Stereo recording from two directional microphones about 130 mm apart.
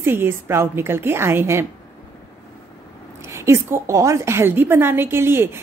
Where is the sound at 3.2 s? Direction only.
20° right (ahead or behind).